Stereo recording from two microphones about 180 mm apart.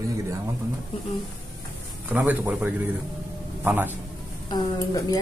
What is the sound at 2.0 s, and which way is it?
A man's voice, 10° right (ahead or behind).